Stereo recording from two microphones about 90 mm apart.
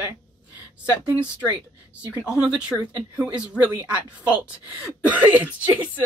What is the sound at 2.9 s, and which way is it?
Speech, 15° right (ahead or behind).